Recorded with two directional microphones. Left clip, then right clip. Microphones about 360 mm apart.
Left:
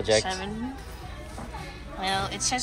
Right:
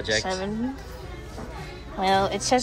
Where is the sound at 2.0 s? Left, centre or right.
Centre.